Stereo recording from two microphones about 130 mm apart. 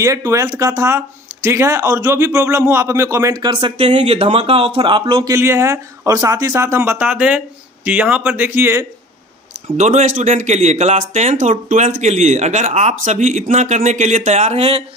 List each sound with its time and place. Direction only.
0.0 s speech: 25° right (ahead or behind)
3.4 s speech: 40° right (ahead or behind)
5.2 s speech: 20° right (ahead or behind)
9.8 s speech: 65° right (ahead or behind)